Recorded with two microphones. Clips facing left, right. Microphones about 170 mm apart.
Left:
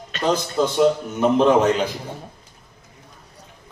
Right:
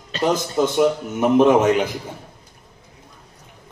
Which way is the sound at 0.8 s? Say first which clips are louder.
Left 3 dB; 15° right (ahead or behind).